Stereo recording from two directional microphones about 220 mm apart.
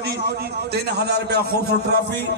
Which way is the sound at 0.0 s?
45° right (ahead or behind).